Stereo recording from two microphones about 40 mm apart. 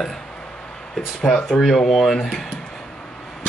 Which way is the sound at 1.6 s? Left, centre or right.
Centre.